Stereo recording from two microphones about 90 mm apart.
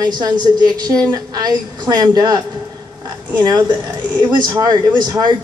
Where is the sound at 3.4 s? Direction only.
55° right (ahead or behind).